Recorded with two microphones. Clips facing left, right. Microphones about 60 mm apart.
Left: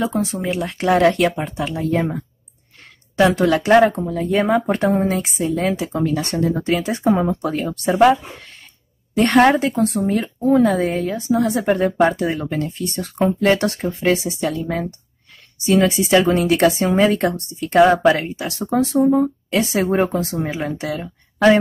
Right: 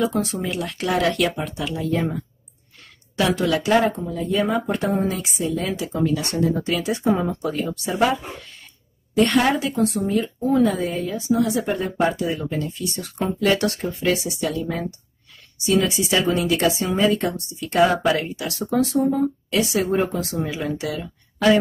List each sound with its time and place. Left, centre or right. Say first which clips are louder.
0.0 s speech: left 1 dB; left
2.8 s a sound: left 7 dB; left
3.5 s a woman's voice: left 5 dB; left
7.4 s a woman's voice: left 4 dB; left
15.9 s a woman's voice: left 5 dB; left